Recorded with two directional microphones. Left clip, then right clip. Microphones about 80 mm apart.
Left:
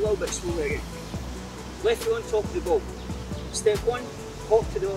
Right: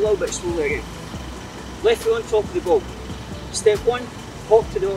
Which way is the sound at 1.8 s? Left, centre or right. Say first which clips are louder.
Right 6 dB; centre.